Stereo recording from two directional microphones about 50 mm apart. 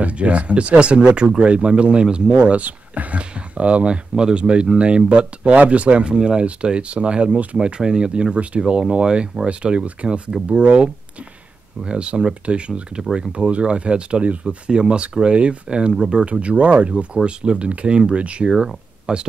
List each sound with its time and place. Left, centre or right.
0.0 s speech: right